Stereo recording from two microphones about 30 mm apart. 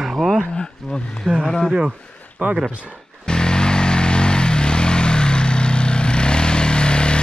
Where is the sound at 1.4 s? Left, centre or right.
Centre.